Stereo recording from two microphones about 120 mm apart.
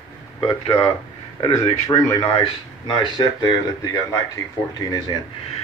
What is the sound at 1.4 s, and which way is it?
Speech, 30° left (ahead or behind).